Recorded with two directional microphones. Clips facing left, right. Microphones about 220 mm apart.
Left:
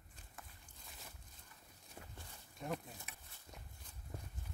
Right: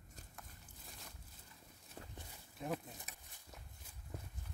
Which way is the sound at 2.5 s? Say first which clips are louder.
Right 1 dB; centre (ahead or behind).